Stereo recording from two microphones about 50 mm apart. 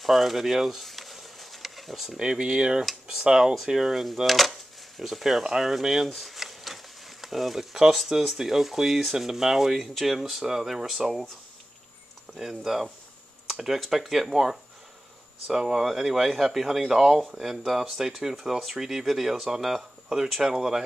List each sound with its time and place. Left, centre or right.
0.0 s a sound: centre
2.1 s speech: centre
12.4 s speech: centre